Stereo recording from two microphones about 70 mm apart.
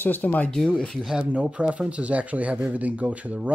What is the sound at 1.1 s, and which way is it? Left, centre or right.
Speech, centre.